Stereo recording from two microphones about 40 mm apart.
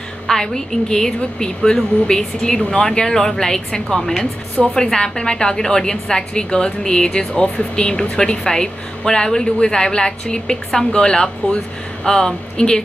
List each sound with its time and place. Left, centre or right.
0.3 s a woman's voice: centre